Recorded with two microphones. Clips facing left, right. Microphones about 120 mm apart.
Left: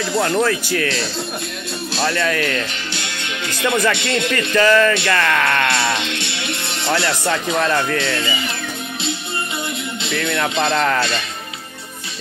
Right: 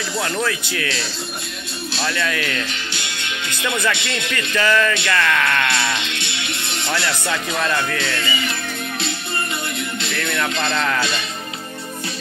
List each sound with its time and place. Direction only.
0.1 s speech: 20° left (ahead or behind)
2.0 s speech: 35° left (ahead or behind)
10.7 s speech: 40° left (ahead or behind)